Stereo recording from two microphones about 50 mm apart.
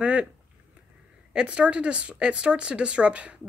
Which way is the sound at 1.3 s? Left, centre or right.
Right.